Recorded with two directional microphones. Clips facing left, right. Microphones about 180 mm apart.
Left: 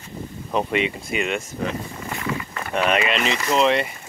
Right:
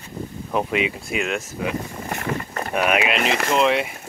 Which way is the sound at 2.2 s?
45° right (ahead or behind).